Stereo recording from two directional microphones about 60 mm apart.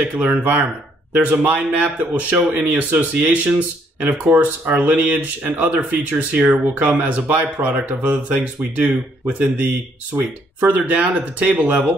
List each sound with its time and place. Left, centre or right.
0.0 s speech: right